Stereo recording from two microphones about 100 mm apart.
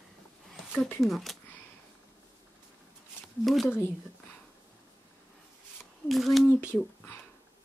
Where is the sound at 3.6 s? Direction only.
20° left (ahead or behind).